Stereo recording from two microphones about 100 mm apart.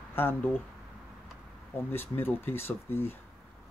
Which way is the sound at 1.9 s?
20° left (ahead or behind).